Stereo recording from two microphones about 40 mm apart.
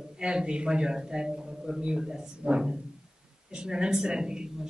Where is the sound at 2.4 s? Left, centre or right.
Right.